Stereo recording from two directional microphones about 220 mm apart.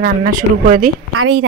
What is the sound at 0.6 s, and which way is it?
Speech, 40° right (ahead or behind).